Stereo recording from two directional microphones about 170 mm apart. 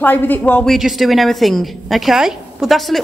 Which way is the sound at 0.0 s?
10° left (ahead or behind).